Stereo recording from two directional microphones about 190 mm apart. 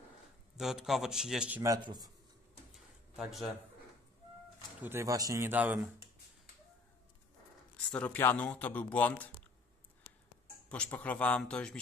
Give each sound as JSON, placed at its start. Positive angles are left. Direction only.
{"t": 0.6, "sound": "a man's voice", "side_deg": 0}
{"t": 1.6, "sound": "a man's voice", "side_deg": -20}
{"t": 2.7, "sound": "a sound", "side_deg": 0}
{"t": 4.8, "sound": "a man's voice", "side_deg": -15}
{"t": 7.9, "sound": "speech", "side_deg": 10}
{"t": 10.7, "sound": "speech", "side_deg": 10}